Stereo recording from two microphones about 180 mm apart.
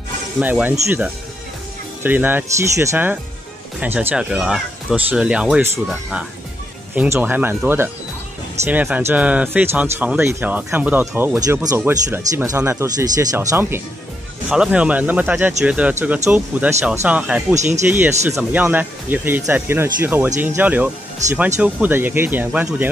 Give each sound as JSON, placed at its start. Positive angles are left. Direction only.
{"t": 0.4, "sound": "speech", "side_deg": -10}